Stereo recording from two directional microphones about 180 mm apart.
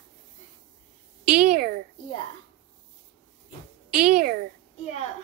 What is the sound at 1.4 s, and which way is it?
Speech, 50° right (ahead or behind).